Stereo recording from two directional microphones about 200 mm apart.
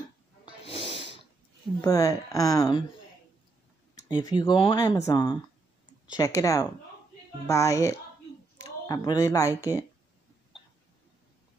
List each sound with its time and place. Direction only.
0.7 s snort: 25° left (ahead or behind)
1.8 s speech: 15° left (ahead or behind)
4.1 s speech: 20° left (ahead or behind)